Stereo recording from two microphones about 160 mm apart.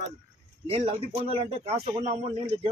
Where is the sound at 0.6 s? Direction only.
35° right (ahead or behind).